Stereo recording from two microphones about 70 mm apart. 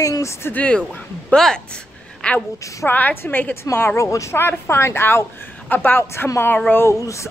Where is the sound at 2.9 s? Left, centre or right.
Left.